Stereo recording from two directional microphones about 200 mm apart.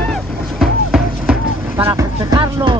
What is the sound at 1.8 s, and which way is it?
Music, 15° right (ahead or behind).